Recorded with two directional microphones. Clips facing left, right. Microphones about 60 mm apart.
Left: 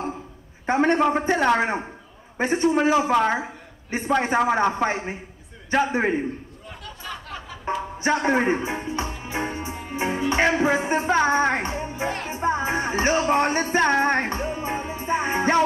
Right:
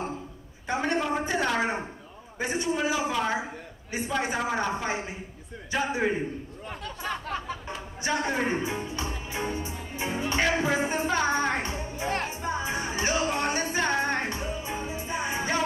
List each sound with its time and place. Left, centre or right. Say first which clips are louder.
0.7 s a man's voice: left 8 dB; left
7.0 s a sound: right 3 dB; right
7.6 s music: left 8 dB; left